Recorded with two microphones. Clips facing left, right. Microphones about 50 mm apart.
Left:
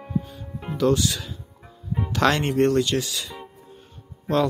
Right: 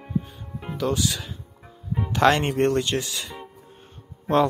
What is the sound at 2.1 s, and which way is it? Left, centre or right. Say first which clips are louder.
Speech: right 2 dB; right.